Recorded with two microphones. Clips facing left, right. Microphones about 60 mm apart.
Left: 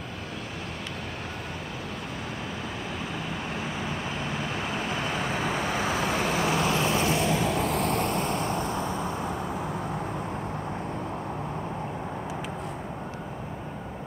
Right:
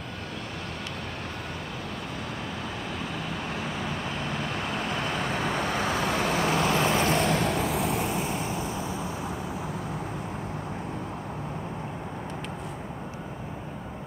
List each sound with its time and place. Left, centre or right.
3.3 s vehicle: centre
6.4 s vehicle: centre
6.7 s vehicle: right
7.2 s vehicle: centre
8.7 s vehicle: left